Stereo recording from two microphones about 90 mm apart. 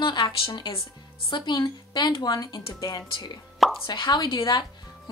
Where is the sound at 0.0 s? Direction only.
60° left (ahead or behind).